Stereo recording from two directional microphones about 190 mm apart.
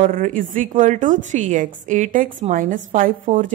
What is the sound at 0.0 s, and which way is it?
A woman's voice, 45° right (ahead or behind).